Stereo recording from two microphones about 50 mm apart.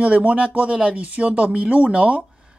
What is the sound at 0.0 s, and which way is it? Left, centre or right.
Speech, right.